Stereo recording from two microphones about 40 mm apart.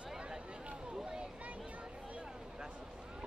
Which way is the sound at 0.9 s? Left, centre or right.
Centre.